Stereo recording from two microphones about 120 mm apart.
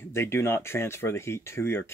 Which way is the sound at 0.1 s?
20° left (ahead or behind).